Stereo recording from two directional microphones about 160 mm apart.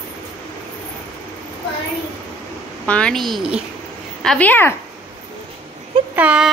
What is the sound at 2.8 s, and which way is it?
A woman's voice, 5° left (ahead or behind).